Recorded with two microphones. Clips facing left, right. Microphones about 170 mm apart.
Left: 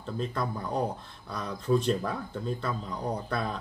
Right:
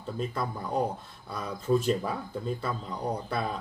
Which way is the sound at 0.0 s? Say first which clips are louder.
Even; 5° right (ahead or behind).